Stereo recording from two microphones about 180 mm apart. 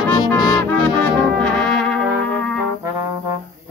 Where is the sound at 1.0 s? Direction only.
5° left (ahead or behind).